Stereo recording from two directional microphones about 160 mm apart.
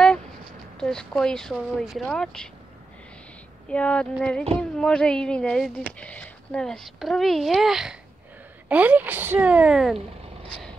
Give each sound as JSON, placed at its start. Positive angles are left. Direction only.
{"t": 0.7, "sound": "speech", "side_deg": 5}
{"t": 3.7, "sound": "female singing", "side_deg": 5}
{"t": 4.6, "sound": "speech", "side_deg": 5}